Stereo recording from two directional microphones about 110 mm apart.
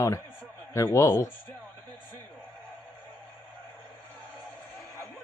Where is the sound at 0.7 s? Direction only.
25° left (ahead or behind).